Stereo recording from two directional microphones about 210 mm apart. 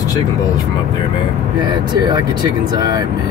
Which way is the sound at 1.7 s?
20° right (ahead or behind).